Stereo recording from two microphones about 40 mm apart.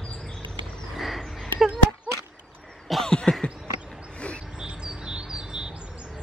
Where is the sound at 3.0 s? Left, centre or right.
Left.